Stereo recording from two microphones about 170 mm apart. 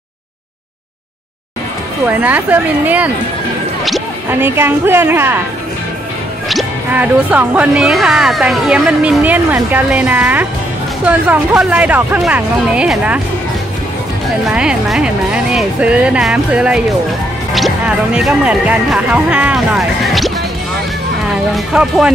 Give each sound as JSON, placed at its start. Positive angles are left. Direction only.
{"t": 2.0, "sound": "speech", "side_deg": -10}
{"t": 4.3, "sound": "speech", "side_deg": -10}
{"t": 6.5, "sound": "speech", "side_deg": -10}
{"t": 14.5, "sound": "speech", "side_deg": -5}